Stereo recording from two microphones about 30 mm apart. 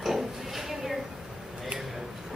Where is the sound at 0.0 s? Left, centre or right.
Centre.